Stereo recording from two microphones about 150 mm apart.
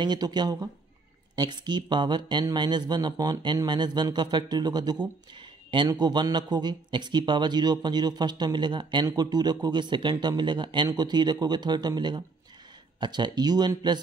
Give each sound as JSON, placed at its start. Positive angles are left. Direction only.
{"t": 0.0, "sound": "a man's voice", "side_deg": -30}